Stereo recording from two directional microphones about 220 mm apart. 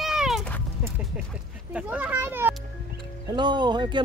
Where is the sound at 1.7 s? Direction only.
5° right (ahead or behind).